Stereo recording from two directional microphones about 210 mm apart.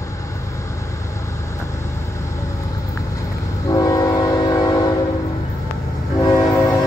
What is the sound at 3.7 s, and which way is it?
Train, 15° left (ahead or behind).